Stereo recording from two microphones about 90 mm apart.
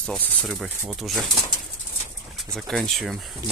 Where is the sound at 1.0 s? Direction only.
Centre (ahead or behind).